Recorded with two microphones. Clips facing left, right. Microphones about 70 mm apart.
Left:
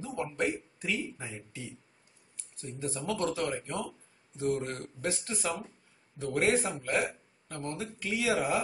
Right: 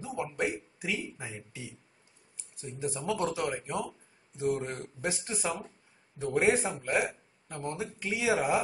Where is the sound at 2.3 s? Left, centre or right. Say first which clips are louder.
Even; centre.